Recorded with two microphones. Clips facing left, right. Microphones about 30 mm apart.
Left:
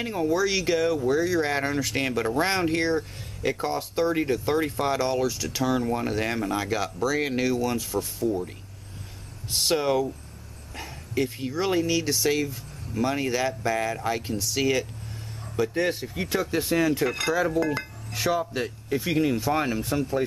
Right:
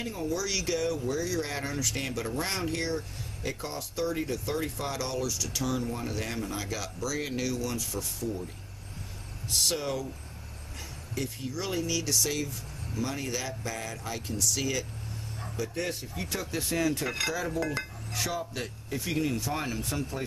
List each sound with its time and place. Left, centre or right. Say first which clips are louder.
0.0 s speech: left 8 dB; left
9.5 s speech: left 6 dB; left
17.3 s a sound: left 7 dB; centre